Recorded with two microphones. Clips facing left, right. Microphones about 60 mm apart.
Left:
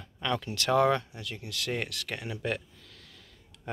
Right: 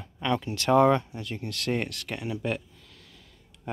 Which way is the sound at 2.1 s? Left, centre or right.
Centre.